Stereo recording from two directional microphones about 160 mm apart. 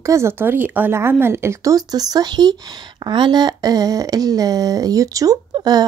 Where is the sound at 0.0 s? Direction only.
20° right (ahead or behind).